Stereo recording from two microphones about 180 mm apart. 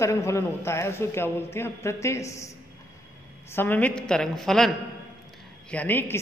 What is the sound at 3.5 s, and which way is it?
A woman's voice, 10° left (ahead or behind).